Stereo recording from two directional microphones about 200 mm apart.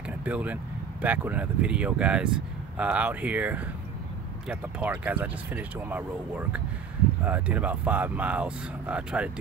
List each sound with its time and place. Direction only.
0.2 s speech: 5° right (ahead or behind)
7.2 s speech: 10° right (ahead or behind)